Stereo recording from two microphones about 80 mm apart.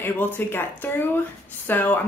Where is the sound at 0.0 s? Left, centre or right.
Left.